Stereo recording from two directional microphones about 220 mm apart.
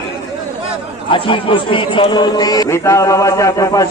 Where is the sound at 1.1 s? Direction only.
25° left (ahead or behind).